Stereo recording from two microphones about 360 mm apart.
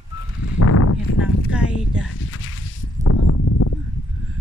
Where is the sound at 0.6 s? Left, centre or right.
Left.